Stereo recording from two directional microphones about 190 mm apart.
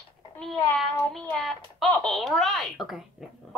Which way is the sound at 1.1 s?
Centre (ahead or behind).